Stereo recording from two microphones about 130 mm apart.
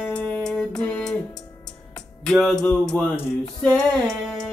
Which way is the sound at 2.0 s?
5° left (ahead or behind).